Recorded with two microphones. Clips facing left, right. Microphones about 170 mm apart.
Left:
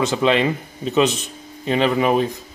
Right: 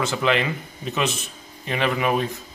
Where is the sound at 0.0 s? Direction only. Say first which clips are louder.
Left 4 dB; 20° left (ahead or behind).